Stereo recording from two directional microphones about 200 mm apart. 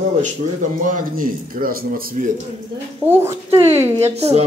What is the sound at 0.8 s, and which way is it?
Speech, 45° right (ahead or behind).